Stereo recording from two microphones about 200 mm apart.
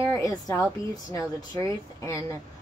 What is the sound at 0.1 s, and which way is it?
A woman's voice, 15° left (ahead or behind).